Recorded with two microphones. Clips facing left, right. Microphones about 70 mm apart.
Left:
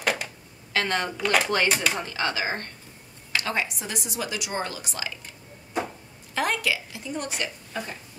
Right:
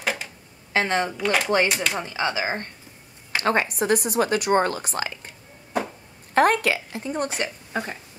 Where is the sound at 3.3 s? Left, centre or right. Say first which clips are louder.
Right 6 dB; right.